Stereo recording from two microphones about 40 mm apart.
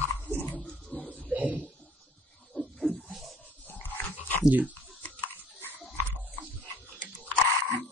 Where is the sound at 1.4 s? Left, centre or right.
Right.